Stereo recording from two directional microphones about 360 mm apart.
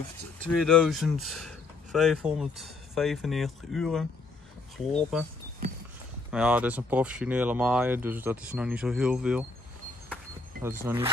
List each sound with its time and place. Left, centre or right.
0.4 s speech: centre
6.3 s speech: centre
10.6 s speech: centre